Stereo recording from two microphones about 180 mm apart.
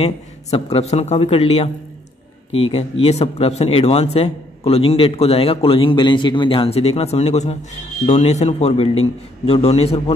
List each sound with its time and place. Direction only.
0.0 s a man's voice: 35° left (ahead or behind)